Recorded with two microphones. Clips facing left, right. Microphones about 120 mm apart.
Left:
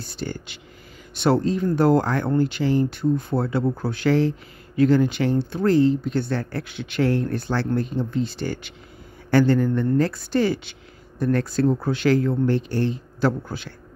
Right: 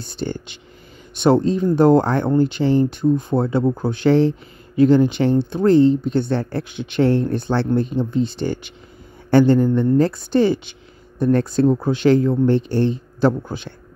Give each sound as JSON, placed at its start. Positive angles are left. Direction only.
{"t": 0.0, "sound": "speech", "side_deg": -25}